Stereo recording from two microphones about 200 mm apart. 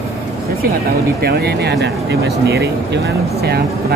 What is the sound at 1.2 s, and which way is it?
Speech, 50° right (ahead or behind).